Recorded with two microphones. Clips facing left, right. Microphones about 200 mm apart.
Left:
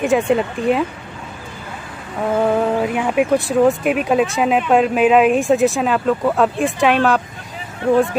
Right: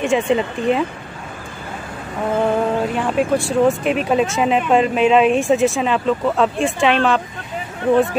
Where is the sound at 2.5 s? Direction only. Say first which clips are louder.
Left 1 dB; 10° left (ahead or behind).